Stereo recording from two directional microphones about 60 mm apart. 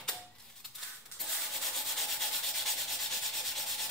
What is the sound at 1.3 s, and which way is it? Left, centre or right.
Rub, centre.